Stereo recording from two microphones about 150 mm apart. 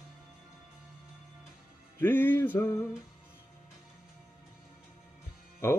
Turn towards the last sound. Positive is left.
turn(degrees=15)  # may be behind; listen again after turning